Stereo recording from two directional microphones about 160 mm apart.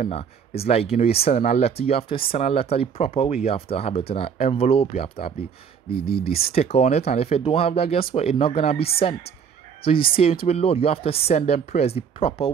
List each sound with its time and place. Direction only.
0.0 s speech: 40° left (ahead or behind)